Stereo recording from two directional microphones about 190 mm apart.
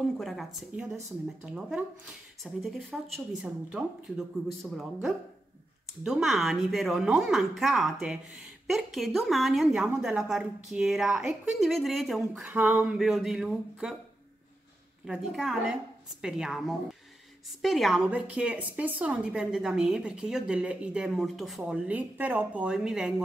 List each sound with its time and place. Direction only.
0.2 s a woman's voice: centre (ahead or behind)
6.0 s a woman's voice: centre (ahead or behind)
15.0 s a woman's voice: 5° right (ahead or behind)